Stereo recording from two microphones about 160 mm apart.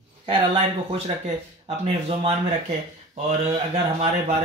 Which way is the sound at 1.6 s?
40° right (ahead or behind).